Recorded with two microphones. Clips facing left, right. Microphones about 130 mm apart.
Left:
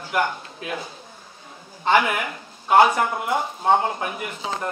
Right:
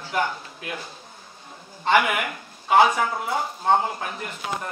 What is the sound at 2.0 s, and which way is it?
Speech, 5° right (ahead or behind).